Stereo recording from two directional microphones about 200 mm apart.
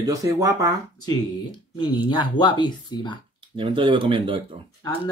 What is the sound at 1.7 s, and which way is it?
Speech, 20° left (ahead or behind).